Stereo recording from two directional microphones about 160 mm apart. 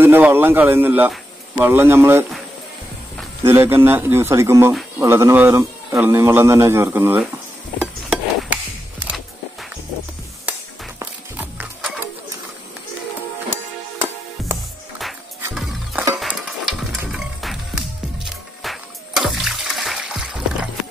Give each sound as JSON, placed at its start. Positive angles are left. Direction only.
{"t": 0.0, "sound": "speech", "side_deg": -15}
{"t": 3.4, "sound": "speech", "side_deg": -15}
{"t": 7.8, "sound": "a sound", "side_deg": -10}
{"t": 11.0, "sound": "music", "side_deg": -10}
{"t": 14.4, "sound": "music", "side_deg": 0}